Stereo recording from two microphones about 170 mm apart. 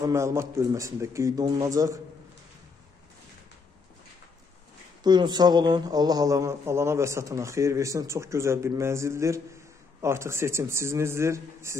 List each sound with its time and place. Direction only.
0.0 s a man's voice: 15° right (ahead or behind)
5.0 s speech: 25° right (ahead or behind)